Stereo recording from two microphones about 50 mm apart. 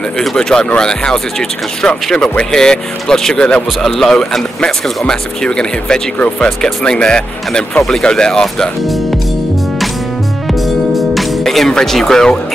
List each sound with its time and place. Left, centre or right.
0.2 s speech: centre; by 6.5 s left
6.6 s speech: centre
10.5 s music: centre